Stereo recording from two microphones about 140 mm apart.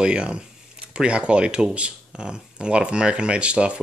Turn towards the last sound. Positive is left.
turn(degrees=-10)  # may be behind; listen again after turning